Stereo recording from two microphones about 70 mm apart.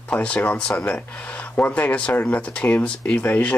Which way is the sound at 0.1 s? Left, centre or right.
Centre.